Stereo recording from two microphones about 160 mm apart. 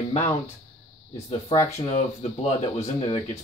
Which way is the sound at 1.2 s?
35° left (ahead or behind).